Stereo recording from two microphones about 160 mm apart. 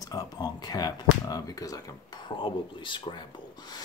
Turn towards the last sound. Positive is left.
turn(degrees=30)  # may be behind; listen again after turning